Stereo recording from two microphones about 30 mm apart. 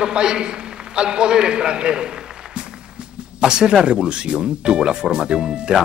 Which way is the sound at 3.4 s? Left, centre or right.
Right.